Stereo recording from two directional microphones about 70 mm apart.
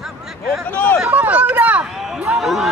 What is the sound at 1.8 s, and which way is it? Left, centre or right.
Speech, centre.